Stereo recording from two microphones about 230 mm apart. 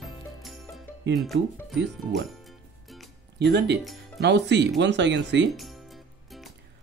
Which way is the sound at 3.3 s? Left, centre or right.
Right.